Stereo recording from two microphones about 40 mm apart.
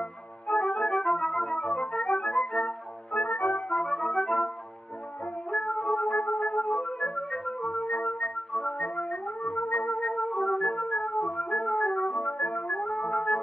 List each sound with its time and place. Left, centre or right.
0.5 s music: left
0.8 s music: centre
1.5 s flute: left
3.1 s music: left
3.7 s music: centre
5.5 s music: left
6.1 s music: left
7.6 s music: left
8.5 s organ: left
8.8 s music: left
9.9 s music: left
10.6 s music: left